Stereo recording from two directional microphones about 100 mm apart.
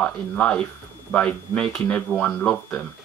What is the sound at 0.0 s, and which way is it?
Speech, 10° left (ahead or behind).